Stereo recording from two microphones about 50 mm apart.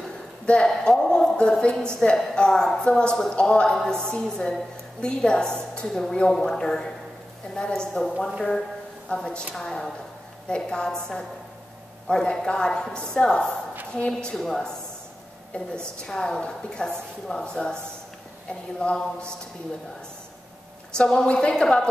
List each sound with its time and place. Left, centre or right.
0.5 s a woman's voice: left
9.1 s a woman's voice: centre
14.3 s a woman's voice: centre
18.8 s speech: centre
20.9 s a woman's voice: centre